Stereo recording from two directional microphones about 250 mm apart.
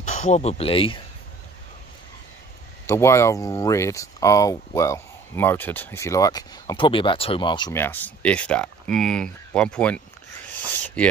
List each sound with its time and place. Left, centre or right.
0.0 s speech: left
2.9 s speech: centre
10.5 s a sound: centre